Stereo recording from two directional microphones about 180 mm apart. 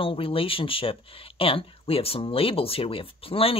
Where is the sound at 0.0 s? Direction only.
30° left (ahead or behind).